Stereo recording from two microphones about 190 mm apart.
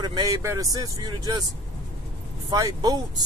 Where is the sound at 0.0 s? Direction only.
20° right (ahead or behind).